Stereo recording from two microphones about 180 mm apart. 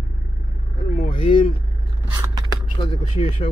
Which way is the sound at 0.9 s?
35° left (ahead or behind).